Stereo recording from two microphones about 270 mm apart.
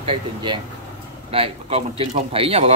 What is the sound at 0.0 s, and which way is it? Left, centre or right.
A man's voice, centre.